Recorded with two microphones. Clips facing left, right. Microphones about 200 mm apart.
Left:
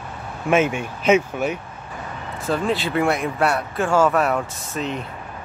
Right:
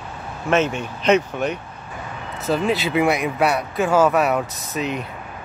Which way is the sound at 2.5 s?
5° right (ahead or behind).